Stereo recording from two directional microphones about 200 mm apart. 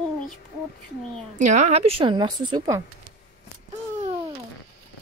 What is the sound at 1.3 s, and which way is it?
A woman's voice, 35° right (ahead or behind).